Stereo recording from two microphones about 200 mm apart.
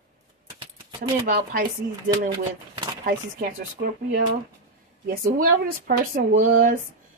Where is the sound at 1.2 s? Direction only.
45° right (ahead or behind).